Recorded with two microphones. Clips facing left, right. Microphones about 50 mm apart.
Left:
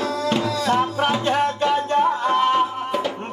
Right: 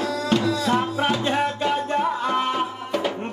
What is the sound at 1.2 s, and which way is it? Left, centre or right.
Music, left.